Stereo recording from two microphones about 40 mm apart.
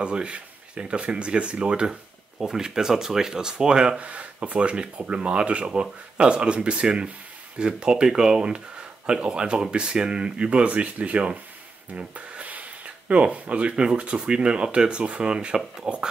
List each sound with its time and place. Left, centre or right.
0.0 s speech: right
1.9 s speech: centre
4.0 s speech: right